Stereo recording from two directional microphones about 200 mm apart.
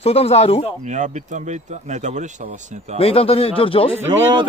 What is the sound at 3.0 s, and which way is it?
Speech, 30° left (ahead or behind).